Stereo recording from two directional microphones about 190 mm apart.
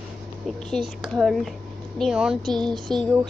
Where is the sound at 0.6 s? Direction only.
Centre (ahead or behind).